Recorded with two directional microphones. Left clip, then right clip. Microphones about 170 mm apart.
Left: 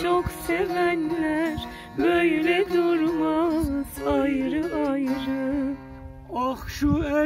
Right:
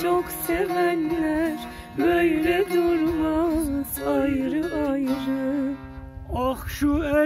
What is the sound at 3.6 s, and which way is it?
Music, 20° right (ahead or behind).